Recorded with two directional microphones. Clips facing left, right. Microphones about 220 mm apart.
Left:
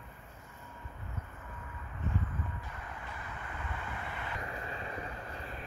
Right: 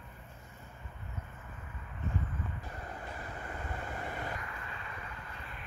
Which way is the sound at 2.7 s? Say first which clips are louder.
Right 3 dB; 35° right (ahead or behind).